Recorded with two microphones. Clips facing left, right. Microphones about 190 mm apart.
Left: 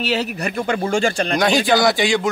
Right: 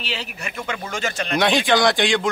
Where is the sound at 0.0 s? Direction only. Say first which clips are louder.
Left 10 dB; 40° left (ahead or behind).